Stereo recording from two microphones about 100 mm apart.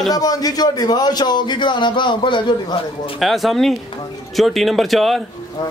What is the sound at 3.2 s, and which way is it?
Speech, centre (ahead or behind).